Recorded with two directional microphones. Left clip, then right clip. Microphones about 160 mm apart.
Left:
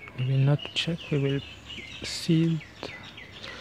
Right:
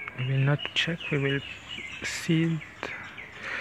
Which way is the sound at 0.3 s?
20° left (ahead or behind).